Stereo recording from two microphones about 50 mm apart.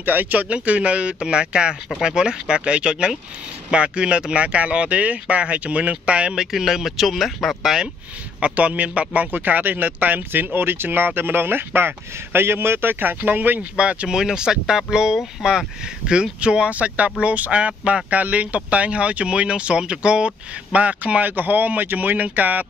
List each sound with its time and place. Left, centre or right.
0.0 s speech: right
0.5 s speech: right
8.4 s speech: right
13.0 s speech: right
13.6 s speech: right; by 15.5 s centre
16.1 s speech: centre; by 22.7 s right